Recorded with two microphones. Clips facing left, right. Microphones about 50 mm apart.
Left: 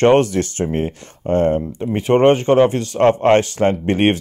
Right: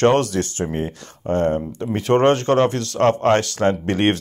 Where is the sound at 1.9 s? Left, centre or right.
Centre.